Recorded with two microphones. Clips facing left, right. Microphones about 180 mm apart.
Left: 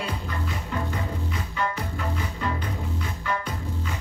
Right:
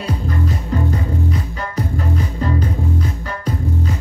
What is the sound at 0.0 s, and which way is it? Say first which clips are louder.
Music: right 8 dB; 40° right (ahead or behind).